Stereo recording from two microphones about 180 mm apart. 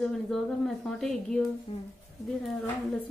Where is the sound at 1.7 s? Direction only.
35° left (ahead or behind).